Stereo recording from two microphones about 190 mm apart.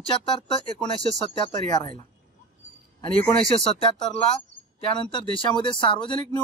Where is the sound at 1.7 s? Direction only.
25° left (ahead or behind).